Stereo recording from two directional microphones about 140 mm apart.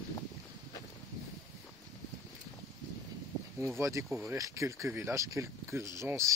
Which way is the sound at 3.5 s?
20° right (ahead or behind).